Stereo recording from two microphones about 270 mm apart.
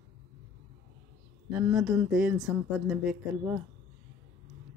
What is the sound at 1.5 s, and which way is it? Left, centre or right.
Speech, centre.